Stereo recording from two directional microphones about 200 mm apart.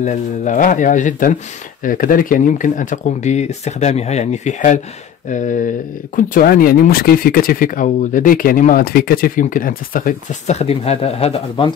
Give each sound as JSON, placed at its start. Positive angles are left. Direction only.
{"t": 0.0, "sound": "speech", "side_deg": 35}